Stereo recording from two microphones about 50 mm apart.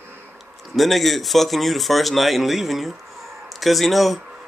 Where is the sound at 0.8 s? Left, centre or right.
Centre.